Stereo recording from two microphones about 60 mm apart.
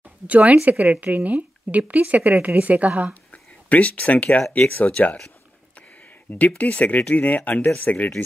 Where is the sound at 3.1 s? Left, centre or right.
Left.